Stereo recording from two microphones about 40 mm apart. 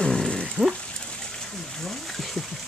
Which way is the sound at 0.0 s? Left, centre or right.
Centre.